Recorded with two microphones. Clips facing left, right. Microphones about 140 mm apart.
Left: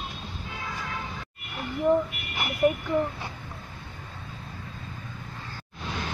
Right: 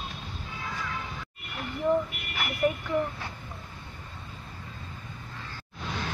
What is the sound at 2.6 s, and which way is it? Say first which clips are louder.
Speech: left 4 dB; 20° left (ahead or behind).